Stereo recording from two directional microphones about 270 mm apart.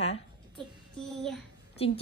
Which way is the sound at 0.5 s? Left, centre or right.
Centre.